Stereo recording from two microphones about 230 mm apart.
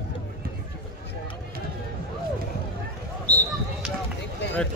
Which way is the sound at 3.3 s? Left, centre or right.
Centre.